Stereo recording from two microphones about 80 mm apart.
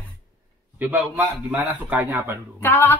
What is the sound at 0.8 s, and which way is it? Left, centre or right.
Speech, right.